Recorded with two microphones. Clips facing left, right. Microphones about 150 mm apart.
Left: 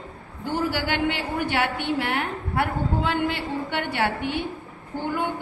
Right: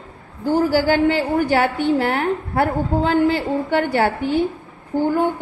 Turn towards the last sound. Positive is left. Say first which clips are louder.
# right 9 dB
turn(degrees=-45)  # may be behind; listen again after turning